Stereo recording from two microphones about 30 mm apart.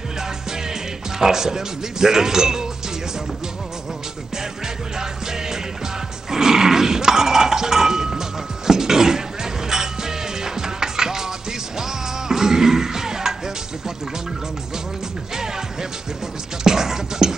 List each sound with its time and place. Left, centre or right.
1.2 s speech: centre
6.3 s cowbell: centre
11.8 s music: centre
15.3 s music: centre
16.6 s beatboxing: centre